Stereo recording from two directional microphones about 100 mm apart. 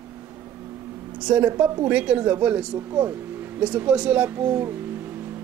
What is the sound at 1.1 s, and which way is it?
A woman's voice, 10° right (ahead or behind).